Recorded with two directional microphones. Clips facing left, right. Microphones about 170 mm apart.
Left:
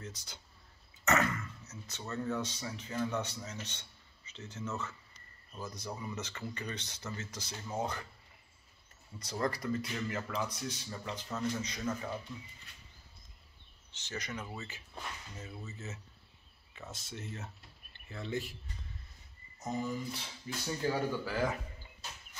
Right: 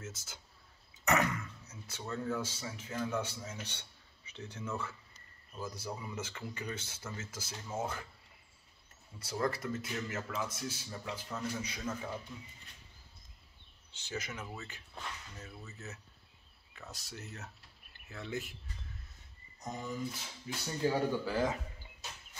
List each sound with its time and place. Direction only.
0.0 s a man's voice: 5° right (ahead or behind)
1.0 s throat clearing: 15° right (ahead or behind)
2.2 s speech: 5° right (ahead or behind)
9.2 s a man's voice: 5° right (ahead or behind)
13.9 s a man's voice: 10° right (ahead or behind)
19.6 s a man's voice: 5° left (ahead or behind)
21.1 s speech: 15° right (ahead or behind)